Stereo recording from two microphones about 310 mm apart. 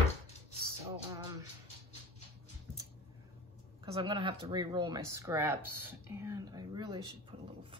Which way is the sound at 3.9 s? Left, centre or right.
Centre.